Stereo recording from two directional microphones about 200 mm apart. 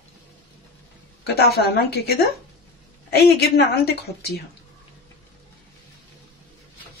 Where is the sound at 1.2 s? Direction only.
50° left (ahead or behind).